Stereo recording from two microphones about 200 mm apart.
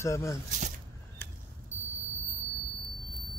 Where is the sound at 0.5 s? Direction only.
40° right (ahead or behind).